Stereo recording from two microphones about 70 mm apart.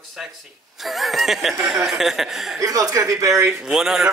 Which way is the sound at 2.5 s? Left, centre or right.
Right.